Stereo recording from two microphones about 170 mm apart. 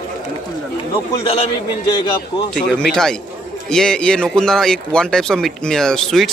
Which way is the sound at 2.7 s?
5° left (ahead or behind).